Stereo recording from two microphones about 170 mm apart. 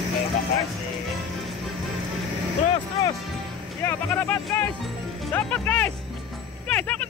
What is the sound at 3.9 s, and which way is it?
Speech, 15° left (ahead or behind).